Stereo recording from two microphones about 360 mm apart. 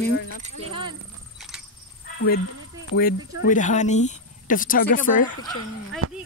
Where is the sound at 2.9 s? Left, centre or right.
Left.